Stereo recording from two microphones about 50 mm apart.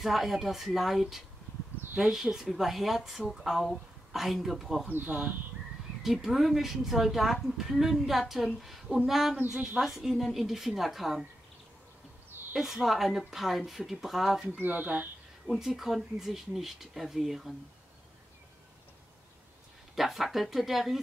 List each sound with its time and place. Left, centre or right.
0.0 s speech: centre
4.8 s speech: right
6.0 s speech: centre
12.5 s speech: centre
14.6 s speech: right
15.6 s speech: centre
20.0 s speech: centre